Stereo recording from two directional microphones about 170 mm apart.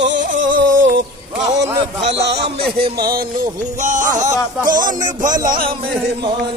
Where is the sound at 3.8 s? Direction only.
45° right (ahead or behind).